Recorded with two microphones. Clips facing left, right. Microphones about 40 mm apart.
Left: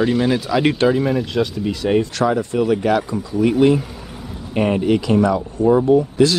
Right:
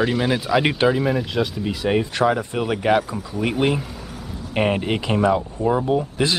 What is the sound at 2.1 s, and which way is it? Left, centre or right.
Speech, right.